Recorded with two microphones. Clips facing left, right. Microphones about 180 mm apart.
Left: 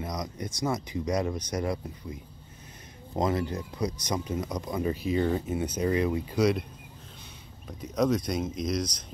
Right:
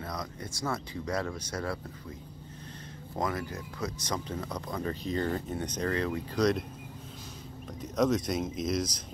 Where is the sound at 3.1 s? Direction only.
20° left (ahead or behind); by 6.7 s 5° left (ahead or behind).